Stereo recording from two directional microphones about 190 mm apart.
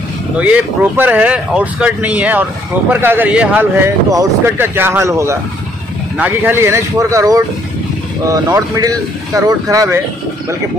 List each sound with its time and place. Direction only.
0.4 s speech: 10° right (ahead or behind)